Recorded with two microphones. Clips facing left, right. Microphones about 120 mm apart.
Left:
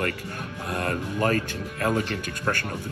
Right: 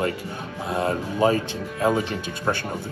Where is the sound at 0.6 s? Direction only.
10° right (ahead or behind).